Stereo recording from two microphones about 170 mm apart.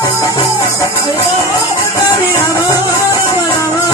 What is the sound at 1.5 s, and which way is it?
Music, 20° left (ahead or behind).